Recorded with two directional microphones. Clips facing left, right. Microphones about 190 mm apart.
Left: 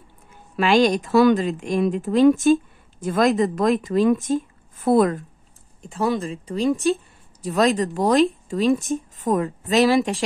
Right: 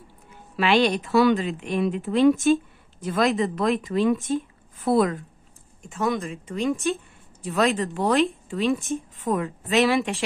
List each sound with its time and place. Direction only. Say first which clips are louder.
0.6 s speech: left 3 dB; 45° left (ahead or behind)
2.3 s speech: left 3 dB; centre (ahead or behind)
3.0 s speech: left 4 dB; 50° left (ahead or behind)
5.8 s speech: left 3 dB; 35° left (ahead or behind)